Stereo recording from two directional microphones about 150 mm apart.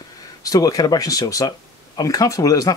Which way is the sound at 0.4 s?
25° left (ahead or behind).